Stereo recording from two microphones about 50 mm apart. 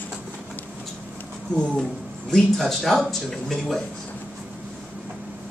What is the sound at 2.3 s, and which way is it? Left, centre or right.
Speech, centre.